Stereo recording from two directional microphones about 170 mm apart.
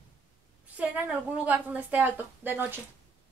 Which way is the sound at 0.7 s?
10° right (ahead or behind).